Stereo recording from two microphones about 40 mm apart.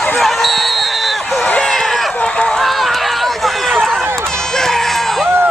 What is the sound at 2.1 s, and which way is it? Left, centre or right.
Run, left.